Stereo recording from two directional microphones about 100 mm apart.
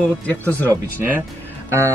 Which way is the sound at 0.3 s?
15° left (ahead or behind).